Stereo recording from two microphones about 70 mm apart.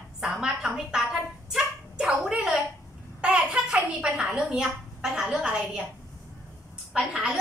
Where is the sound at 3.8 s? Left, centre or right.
Centre.